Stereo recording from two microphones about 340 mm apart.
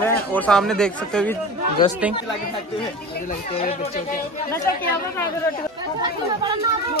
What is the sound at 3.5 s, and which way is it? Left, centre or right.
Speech, centre.